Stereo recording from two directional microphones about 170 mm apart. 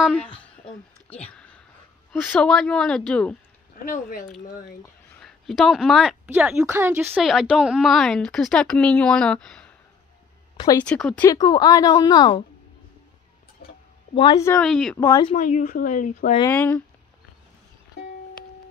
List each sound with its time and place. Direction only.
0.1 s a sound: 5° left (ahead or behind)
2.3 s a woman's voice: 5° left (ahead or behind)
5.2 s a woman's voice: centre (ahead or behind)
7.2 s a woman's voice: centre (ahead or behind)
10.8 s speech: 5° left (ahead or behind)
11.2 s a woman's voice: 25° left (ahead or behind)
14.1 s a woman's voice: 30° left (ahead or behind)
14.4 s speech: 10° left (ahead or behind)
14.7 s a woman's voice: centre (ahead or behind)
15.0 s a woman's voice: 25° left (ahead or behind)
15.3 s speech: 45° left (ahead or behind)
16.4 s speech: 10° left (ahead or behind)
18.0 s music: 80° left